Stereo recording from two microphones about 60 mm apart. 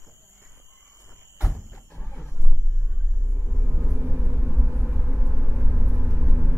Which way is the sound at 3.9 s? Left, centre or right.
Right.